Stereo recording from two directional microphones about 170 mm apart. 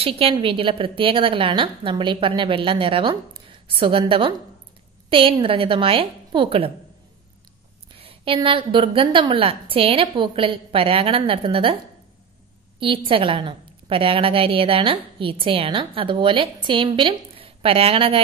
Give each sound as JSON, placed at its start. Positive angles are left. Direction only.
{"t": 0.0, "sound": "a woman's voice", "side_deg": -35}
{"t": 8.0, "sound": "a woman's voice", "side_deg": -30}
{"t": 12.8, "sound": "a woman's voice", "side_deg": -30}